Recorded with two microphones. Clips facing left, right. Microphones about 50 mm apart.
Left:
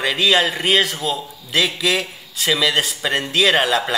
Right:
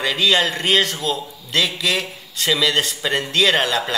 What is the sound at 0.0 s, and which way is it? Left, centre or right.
A man's voice, centre.